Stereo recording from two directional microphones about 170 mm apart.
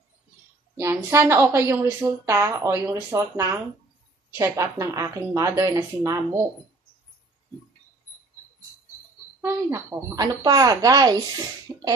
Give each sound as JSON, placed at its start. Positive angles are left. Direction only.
{"t": 0.7, "sound": "a woman's voice", "side_deg": -15}
{"t": 9.4, "sound": "speech", "side_deg": -15}